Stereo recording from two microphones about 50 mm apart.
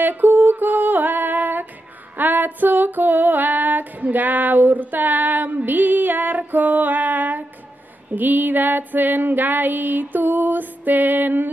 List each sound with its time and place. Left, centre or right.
0.0 s music: right
2.1 s female singing: right